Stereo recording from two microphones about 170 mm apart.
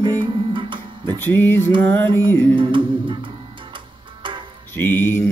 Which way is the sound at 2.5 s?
30° right (ahead or behind).